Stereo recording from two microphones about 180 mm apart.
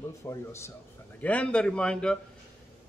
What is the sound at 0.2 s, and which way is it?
A man's voice, 15° left (ahead or behind).